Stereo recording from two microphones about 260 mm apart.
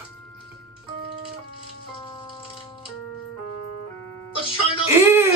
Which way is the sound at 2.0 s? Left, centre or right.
Centre.